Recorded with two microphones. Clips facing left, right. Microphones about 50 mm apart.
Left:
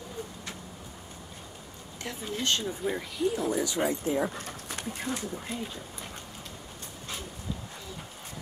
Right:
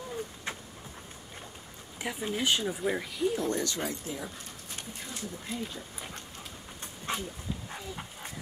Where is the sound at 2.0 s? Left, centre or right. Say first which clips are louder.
Right 2 dB; centre.